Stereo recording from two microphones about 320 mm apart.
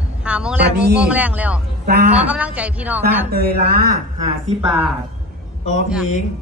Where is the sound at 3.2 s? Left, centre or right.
Right.